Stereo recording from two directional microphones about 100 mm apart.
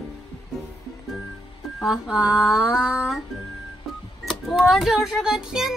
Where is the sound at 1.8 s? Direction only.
5° right (ahead or behind).